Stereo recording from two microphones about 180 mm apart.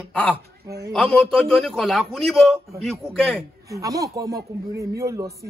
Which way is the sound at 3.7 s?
20° right (ahead or behind).